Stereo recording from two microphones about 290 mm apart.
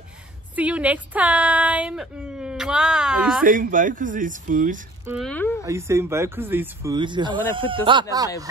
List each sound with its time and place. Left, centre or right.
0.6 s speech: centre
3.4 s speech: right
5.0 s speech: centre
5.7 s speech: centre